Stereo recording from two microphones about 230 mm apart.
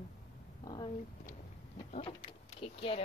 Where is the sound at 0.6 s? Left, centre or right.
Centre.